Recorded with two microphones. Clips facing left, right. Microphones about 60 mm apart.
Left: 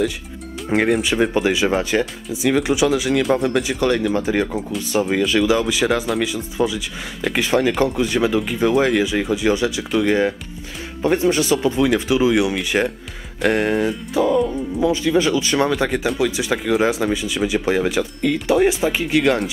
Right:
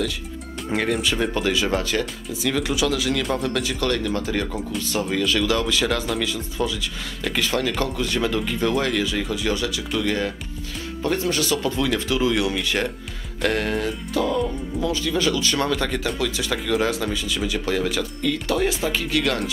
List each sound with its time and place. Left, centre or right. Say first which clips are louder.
0.7 s speech: left 5 dB; left